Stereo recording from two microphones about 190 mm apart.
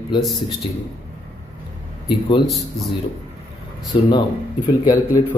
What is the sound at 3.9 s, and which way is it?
A man's voice, 25° left (ahead or behind).